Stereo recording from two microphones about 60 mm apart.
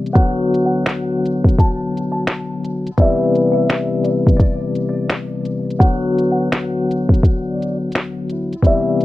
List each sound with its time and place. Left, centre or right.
0.8 s music: centre
3.0 s music: centre
5.8 s music: centre
8.6 s music: centre